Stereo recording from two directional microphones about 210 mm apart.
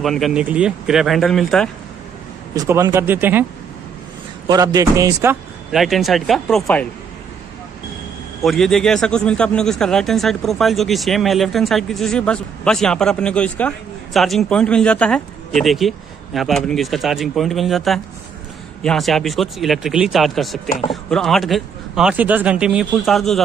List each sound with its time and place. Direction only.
0.0 s a man's voice: centre (ahead or behind)
2.5 s speech: 15° right (ahead or behind)
4.5 s speech: 15° right (ahead or behind)
5.7 s a man's voice: centre (ahead or behind)
8.4 s a man's voice: centre (ahead or behind)